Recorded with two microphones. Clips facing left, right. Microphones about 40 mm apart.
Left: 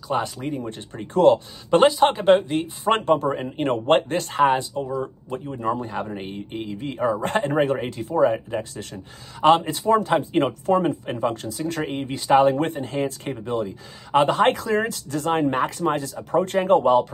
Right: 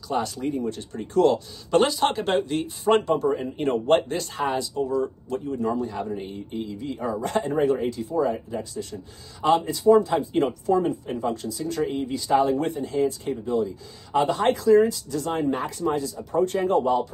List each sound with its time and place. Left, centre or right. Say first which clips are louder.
0.1 s speech: left 1 dB; left
2.9 s a man's voice: left 1 dB; left
4.8 s speech: right 2 dB; centre; by 17.1 s left